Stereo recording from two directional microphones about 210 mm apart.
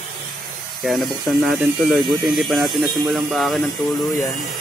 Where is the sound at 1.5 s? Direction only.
Centre (ahead or behind).